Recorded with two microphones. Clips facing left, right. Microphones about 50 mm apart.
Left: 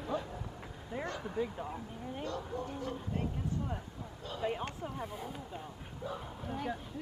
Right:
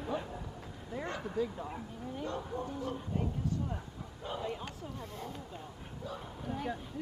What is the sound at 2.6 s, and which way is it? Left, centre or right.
Speech, left.